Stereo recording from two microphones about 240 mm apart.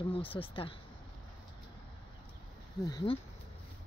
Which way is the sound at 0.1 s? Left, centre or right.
Left.